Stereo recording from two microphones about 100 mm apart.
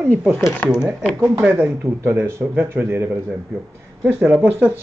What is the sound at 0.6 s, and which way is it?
Speech, 15° left (ahead or behind).